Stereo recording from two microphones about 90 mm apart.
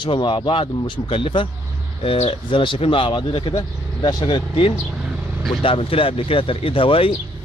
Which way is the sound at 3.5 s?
55° left (ahead or behind).